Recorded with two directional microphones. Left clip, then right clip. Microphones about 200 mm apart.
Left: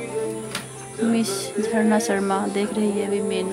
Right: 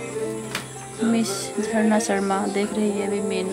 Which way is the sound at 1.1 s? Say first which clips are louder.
Even; 5° left (ahead or behind).